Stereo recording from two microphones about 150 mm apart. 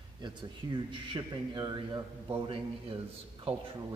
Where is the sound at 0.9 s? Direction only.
35° right (ahead or behind).